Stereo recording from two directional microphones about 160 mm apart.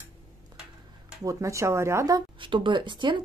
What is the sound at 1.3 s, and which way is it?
A woman's voice, 20° right (ahead or behind).